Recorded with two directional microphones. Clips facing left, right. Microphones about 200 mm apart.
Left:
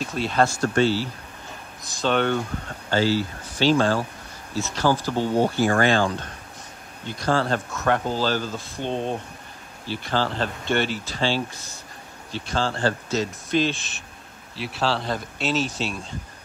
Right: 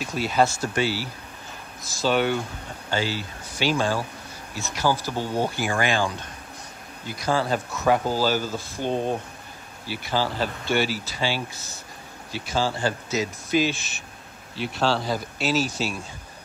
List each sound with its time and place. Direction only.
0.0 s speech: 5° right (ahead or behind)
5.1 s speech: 15° left (ahead or behind)
5.6 s speech: 10° right (ahead or behind)
7.1 s speech: 10° right (ahead or behind)